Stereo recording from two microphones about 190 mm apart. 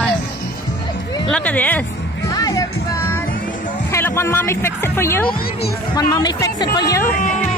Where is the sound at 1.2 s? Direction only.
5° left (ahead or behind).